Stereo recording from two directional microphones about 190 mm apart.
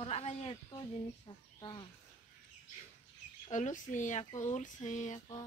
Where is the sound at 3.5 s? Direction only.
40° left (ahead or behind).